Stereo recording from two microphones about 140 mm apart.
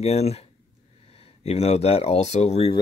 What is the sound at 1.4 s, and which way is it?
Speech, 45° left (ahead or behind).